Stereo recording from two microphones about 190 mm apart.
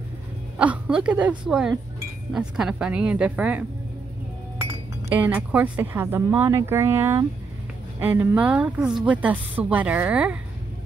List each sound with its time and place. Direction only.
0.6 s a woman's voice: 5° right (ahead or behind)
5.1 s a woman's voice: 10° right (ahead or behind)